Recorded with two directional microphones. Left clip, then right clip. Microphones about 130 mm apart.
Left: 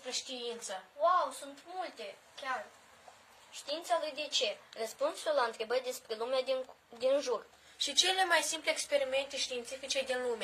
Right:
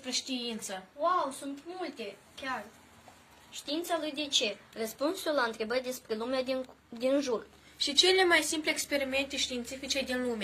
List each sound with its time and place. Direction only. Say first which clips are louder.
0.0 s a woman's voice: right 4 dB; 15° left (ahead or behind)
1.0 s a woman's voice: even; 15° right (ahead or behind)
3.6 s a woman's voice: right 1 dB; 25° right (ahead or behind); by 7.4 s centre (ahead or behind)
7.8 s a woman's voice: right 5 dB; 55° left (ahead or behind)
8.5 s a woman's voice: right 2 dB; 30° left (ahead or behind); by 10.4 s 15° left (ahead or behind)